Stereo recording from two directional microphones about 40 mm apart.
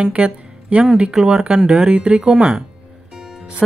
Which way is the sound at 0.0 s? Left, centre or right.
Right.